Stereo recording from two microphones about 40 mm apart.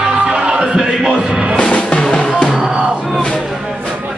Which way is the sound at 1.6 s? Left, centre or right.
Left.